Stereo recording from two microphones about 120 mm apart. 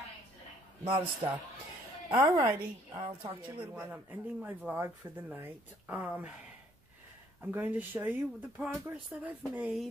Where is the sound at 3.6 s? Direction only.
15° right (ahead or behind).